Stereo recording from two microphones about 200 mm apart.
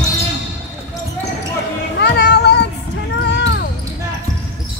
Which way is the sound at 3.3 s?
60° left (ahead or behind).